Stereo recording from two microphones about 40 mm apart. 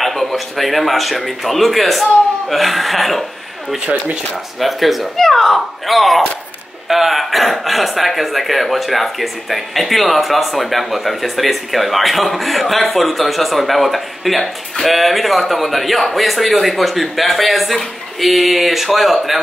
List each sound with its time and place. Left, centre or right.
0.0 s speech: centre
3.8 s speech: right
4.6 s speech: centre
5.1 s speech: centre